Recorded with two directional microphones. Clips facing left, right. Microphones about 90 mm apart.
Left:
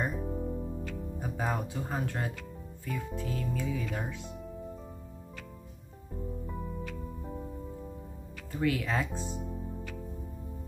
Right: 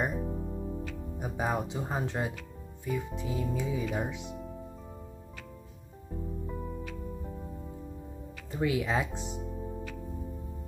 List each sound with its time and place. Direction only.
0.2 s music: centre (ahead or behind)
1.1 s speech: 15° right (ahead or behind)
8.5 s speech: 20° right (ahead or behind)
9.4 s music: centre (ahead or behind)